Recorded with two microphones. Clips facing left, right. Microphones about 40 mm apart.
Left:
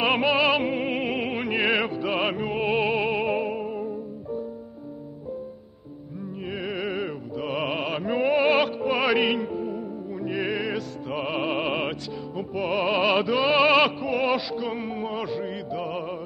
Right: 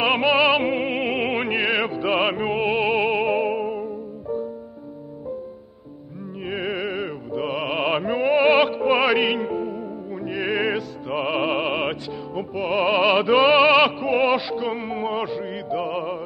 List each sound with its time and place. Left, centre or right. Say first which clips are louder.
0.0 s music: right 3 dB; centre; by 1.5 s right
1.8 s music: right 4 dB; centre
6.4 s music: right 5 dB; right
6.8 s music: right 2 dB; centre
7.8 s music: right 6 dB; right
8.1 s music: right 1 dB; centre
8.5 s music: right 5 dB; right
9.0 s music: right 2 dB; centre
9.4 s music: right 3 dB; right
10.5 s music: right 5 dB; right; by 12.8 s centre
12.8 s opera: right 4 dB; centre
13.7 s music: right 3 dB; centre
13.9 s music: right 4 dB; right
15.2 s music: right 2 dB; centre